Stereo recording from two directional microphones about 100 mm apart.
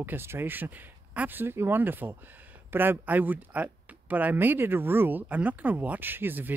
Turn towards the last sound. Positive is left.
turn(degrees=-20)  # may be behind; listen again after turning